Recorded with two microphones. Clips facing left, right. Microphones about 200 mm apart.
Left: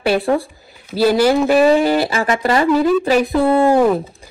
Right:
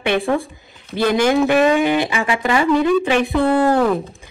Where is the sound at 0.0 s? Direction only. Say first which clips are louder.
Left 2 dB; 35° left (ahead or behind).